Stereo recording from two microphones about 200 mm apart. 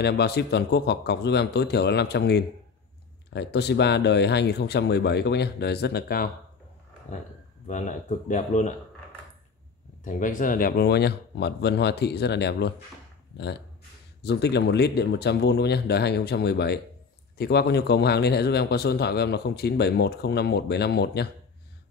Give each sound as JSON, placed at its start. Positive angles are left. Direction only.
{"t": 0.0, "sound": "speech", "side_deg": 55}
{"t": 7.6, "sound": "speech", "side_deg": 40}
{"t": 10.0, "sound": "speech", "side_deg": 40}